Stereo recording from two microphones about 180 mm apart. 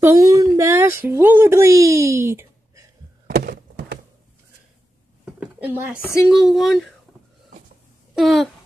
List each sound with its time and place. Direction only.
0.0 s speech: 20° right (ahead or behind)
3.3 s thunk: 55° right (ahead or behind)
5.2 s speech: 10° right (ahead or behind)
8.1 s speech: centre (ahead or behind)